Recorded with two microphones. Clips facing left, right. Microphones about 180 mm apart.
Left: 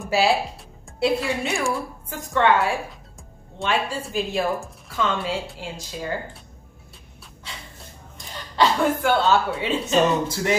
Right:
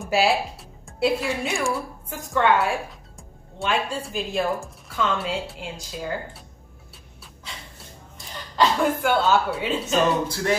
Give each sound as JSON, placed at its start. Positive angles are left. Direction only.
{"t": 0.1, "sound": "a woman's voice", "side_deg": 0}
{"t": 8.5, "sound": "a woman's voice", "side_deg": 0}
{"t": 10.2, "sound": "speech", "side_deg": 20}